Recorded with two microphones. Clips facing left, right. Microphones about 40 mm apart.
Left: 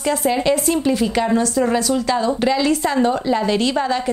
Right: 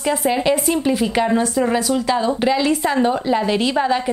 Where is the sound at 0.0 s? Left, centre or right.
Centre.